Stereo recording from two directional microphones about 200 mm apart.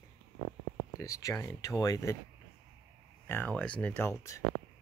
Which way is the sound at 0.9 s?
15° left (ahead or behind).